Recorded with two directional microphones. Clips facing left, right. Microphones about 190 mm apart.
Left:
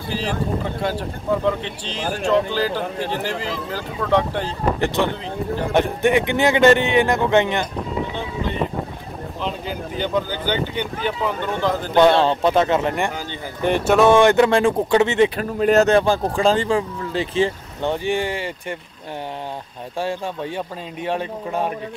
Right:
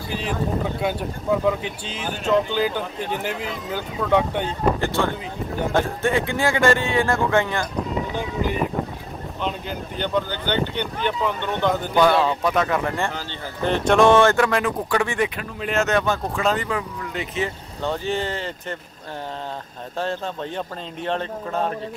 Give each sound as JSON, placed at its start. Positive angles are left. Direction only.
{"t": 0.8, "sound": "speech", "side_deg": -5}
{"t": 4.7, "sound": "speech", "side_deg": 20}
{"t": 9.4, "sound": "speech", "side_deg": 5}
{"t": 11.9, "sound": "speech", "side_deg": 25}
{"t": 13.7, "sound": "speech", "side_deg": 10}
{"t": 17.8, "sound": "speech", "side_deg": 15}
{"t": 20.0, "sound": "speech", "side_deg": 10}